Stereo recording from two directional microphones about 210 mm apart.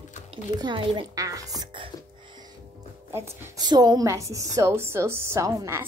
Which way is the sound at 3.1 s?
10° right (ahead or behind).